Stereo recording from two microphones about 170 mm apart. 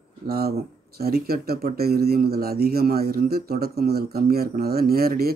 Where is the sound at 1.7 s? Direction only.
65° right (ahead or behind).